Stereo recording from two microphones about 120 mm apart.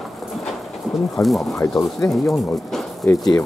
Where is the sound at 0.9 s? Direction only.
Centre (ahead or behind).